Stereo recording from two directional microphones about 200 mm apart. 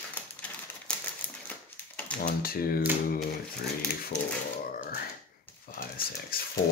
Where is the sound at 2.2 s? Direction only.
45° left (ahead or behind).